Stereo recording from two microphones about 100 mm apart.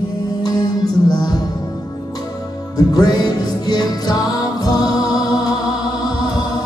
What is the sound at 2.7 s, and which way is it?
Music, 40° left (ahead or behind).